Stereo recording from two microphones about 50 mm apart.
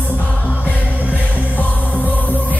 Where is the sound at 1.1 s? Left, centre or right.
Left.